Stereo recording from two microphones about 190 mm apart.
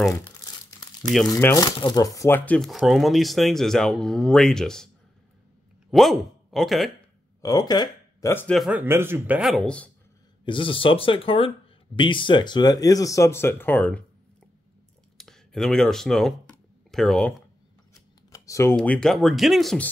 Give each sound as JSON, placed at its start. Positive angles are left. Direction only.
{"t": 0.1, "sound": "crumpling", "side_deg": 15}
{"t": 1.2, "sound": "speech", "side_deg": 15}
{"t": 5.9, "sound": "speech", "side_deg": 0}
{"t": 7.4, "sound": "speech", "side_deg": 20}
{"t": 8.5, "sound": "speech", "side_deg": -5}
{"t": 10.4, "sound": "speech", "side_deg": 25}
{"t": 15.1, "sound": "speech", "side_deg": 0}
{"t": 18.3, "sound": "computer keyboard", "side_deg": 15}
{"t": 18.8, "sound": "speech", "side_deg": 5}